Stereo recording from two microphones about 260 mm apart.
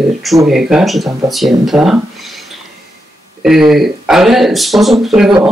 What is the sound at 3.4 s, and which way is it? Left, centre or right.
Speech, centre.